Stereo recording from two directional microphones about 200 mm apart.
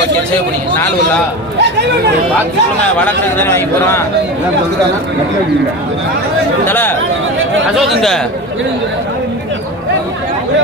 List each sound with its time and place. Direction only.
1.6 s speech: 60° right (ahead or behind)
2.8 s speech: 10° left (ahead or behind)
6.6 s speech: 10° left (ahead or behind)
7.7 s speech: centre (ahead or behind)